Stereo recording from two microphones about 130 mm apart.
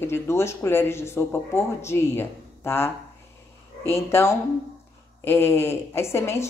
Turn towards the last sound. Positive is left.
turn(degrees=20)  # may be behind; listen again after turning